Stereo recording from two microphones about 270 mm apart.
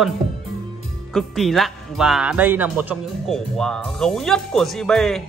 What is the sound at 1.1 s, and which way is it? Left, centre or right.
Speech, centre.